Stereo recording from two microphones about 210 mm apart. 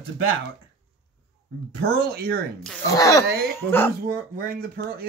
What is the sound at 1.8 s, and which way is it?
Speech, 45° right (ahead or behind).